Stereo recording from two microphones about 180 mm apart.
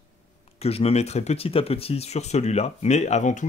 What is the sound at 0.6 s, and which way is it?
Speech, 35° left (ahead or behind).